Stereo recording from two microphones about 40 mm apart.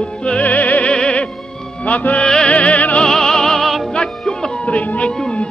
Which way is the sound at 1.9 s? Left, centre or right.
Left.